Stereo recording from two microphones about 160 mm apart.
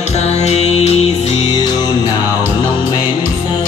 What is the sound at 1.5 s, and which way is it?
Music, 25° left (ahead or behind).